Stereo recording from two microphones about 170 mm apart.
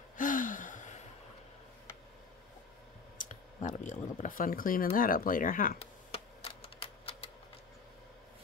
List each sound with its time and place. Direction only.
0.2 s gasp: 50° left (ahead or behind)
3.2 s speech: 45° left (ahead or behind)
6.1 s typewriter: 35° left (ahead or behind)